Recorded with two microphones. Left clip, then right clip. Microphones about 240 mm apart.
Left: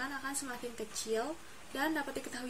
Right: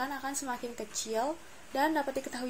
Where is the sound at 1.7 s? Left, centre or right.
Centre.